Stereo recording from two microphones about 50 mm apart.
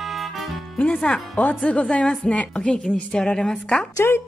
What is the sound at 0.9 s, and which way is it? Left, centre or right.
A woman's voice, centre.